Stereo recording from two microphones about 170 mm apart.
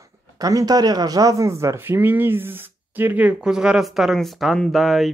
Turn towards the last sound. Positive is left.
turn(degrees=0)  # may be behind; listen again after turning